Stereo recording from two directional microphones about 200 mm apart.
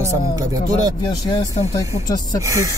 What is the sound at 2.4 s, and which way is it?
Speech, 15° right (ahead or behind).